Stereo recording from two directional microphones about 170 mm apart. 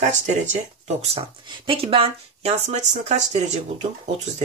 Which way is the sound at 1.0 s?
30° right (ahead or behind).